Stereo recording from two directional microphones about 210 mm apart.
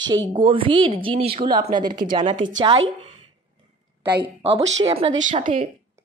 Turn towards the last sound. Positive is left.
turn(degrees=-35)  # may be behind; listen again after turning